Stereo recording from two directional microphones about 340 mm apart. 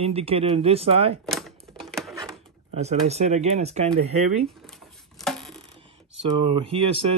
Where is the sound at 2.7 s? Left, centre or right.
Centre.